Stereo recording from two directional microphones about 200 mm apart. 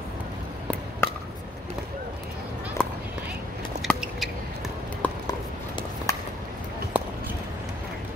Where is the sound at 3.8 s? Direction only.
Centre (ahead or behind).